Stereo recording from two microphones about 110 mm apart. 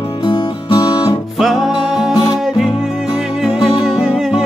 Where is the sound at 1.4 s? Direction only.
Centre (ahead or behind).